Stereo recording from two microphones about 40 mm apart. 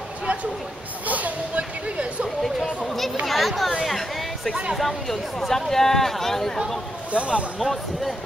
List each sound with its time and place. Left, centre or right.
1.0 s a sound: right
3.3 s chatter: centre
4.7 s speech: centre
7.1 s speech: right
7.5 s speech: centre